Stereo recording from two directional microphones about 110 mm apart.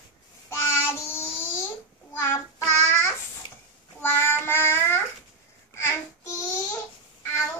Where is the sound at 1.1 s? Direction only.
20° left (ahead or behind).